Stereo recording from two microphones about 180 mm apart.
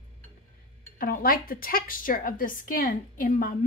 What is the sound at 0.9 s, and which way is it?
A woman's voice, 55° left (ahead or behind).